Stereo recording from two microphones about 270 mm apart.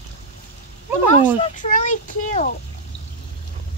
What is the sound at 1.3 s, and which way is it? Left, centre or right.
Speech, left.